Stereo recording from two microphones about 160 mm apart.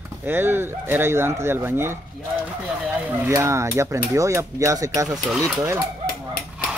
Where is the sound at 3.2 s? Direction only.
20° right (ahead or behind).